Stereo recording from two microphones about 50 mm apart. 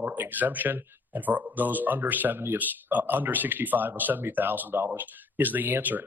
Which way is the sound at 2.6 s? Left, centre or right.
Right.